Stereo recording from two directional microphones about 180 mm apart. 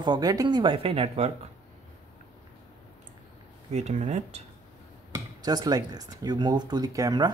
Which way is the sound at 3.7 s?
35° right (ahead or behind).